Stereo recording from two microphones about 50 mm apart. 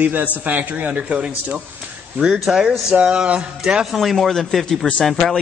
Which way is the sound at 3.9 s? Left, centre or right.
Centre.